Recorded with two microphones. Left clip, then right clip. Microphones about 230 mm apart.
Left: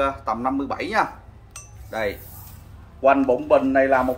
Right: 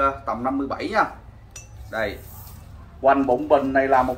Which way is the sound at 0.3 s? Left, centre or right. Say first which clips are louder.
Left 1 dB; left.